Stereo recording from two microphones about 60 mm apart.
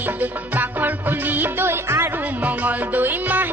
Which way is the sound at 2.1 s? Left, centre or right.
Right.